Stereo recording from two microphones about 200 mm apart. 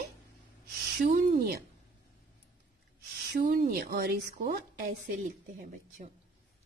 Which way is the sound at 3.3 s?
40° right (ahead or behind).